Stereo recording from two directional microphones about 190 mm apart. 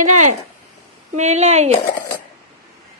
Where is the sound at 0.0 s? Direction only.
40° right (ahead or behind).